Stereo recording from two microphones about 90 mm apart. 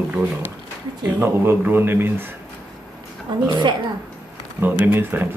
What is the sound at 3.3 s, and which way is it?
Speech, 60° right (ahead or behind).